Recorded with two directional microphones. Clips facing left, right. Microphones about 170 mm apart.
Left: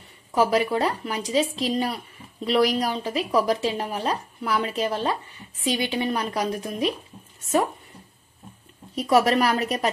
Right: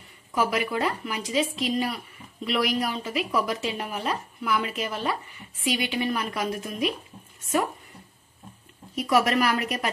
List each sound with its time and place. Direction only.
0.3 s a woman's voice: 30° left (ahead or behind)
8.9 s a woman's voice: 30° left (ahead or behind)